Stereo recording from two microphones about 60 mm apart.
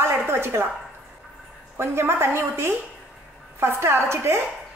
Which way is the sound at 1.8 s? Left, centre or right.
Right.